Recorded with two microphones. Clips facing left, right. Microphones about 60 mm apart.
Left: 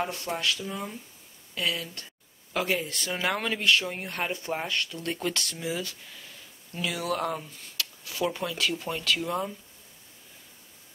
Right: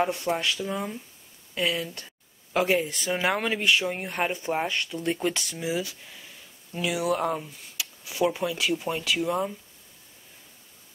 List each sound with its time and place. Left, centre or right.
0.0 s speech: centre